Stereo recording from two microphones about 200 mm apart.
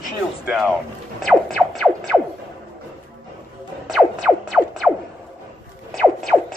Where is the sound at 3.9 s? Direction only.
5° right (ahead or behind).